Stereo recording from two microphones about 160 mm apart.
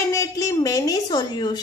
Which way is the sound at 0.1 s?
20° left (ahead or behind).